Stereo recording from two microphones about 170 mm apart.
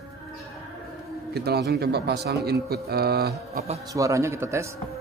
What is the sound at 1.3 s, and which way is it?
Speech, 70° right (ahead or behind).